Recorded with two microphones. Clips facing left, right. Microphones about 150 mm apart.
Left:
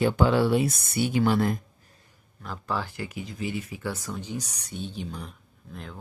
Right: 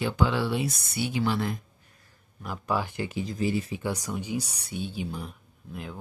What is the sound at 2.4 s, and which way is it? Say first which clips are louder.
Speech: right 2 dB; 15° right (ahead or behind).